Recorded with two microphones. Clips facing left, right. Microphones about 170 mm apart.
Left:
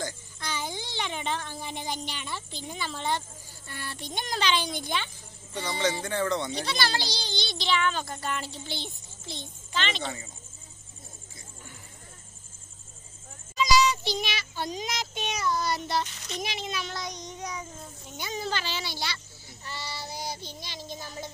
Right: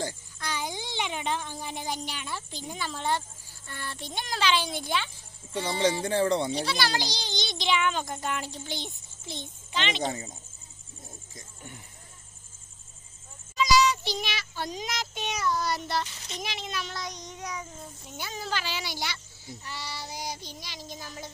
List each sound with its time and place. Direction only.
0.4 s speech: 10° right (ahead or behind)
3.6 s speech: 5° left (ahead or behind)
5.5 s speech: 30° right (ahead or behind)
6.6 s speech: 10° right (ahead or behind)
13.6 s child singing: centre (ahead or behind)
16.3 s speech: 5° left (ahead or behind)
18.1 s speech: 5° right (ahead or behind)
20.3 s child singing: 30° left (ahead or behind)